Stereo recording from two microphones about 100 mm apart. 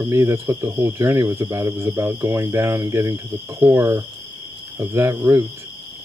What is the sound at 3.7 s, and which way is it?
Speech, 40° right (ahead or behind).